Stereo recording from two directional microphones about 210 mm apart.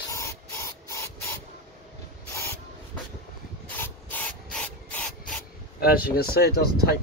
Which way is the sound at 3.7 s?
10° left (ahead or behind).